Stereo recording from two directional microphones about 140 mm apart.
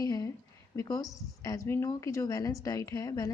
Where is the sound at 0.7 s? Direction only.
25° left (ahead or behind).